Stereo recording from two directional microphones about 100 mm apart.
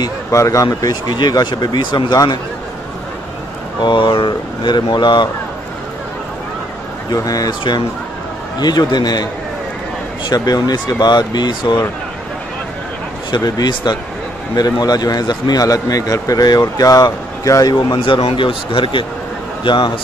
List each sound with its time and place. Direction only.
0.0 s speech: 35° left (ahead or behind); by 2.1 s 50° left (ahead or behind)
3.8 s speech: 50° left (ahead or behind)
7.1 s a man's voice: 35° left (ahead or behind)
10.3 s speech: 40° left (ahead or behind)
13.3 s a man's voice: 45° left (ahead or behind)
17.7 s a man's voice: 55° left (ahead or behind)